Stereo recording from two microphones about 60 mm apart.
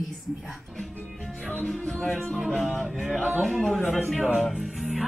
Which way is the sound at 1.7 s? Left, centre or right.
Centre.